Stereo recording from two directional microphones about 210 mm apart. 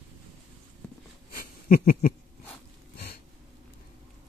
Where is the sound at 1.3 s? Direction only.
45° left (ahead or behind).